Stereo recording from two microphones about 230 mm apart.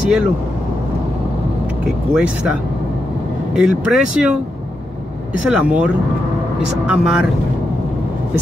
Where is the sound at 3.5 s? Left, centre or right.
Centre.